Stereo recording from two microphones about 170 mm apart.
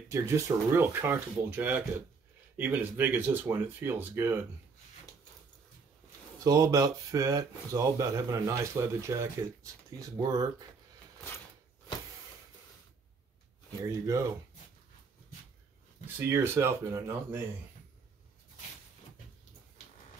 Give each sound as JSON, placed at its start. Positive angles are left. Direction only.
{"t": 0.1, "sound": "speech", "side_deg": -15}
{"t": 6.4, "sound": "speech", "side_deg": -20}
{"t": 13.8, "sound": "speech", "side_deg": -20}
{"t": 16.2, "sound": "speech", "side_deg": -15}